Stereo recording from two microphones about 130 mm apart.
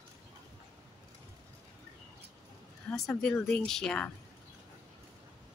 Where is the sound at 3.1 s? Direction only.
10° left (ahead or behind).